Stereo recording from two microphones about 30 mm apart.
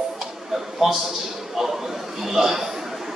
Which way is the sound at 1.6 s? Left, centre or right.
Centre.